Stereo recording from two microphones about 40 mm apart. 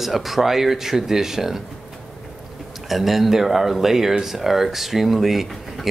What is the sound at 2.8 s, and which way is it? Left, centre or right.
Speech, centre.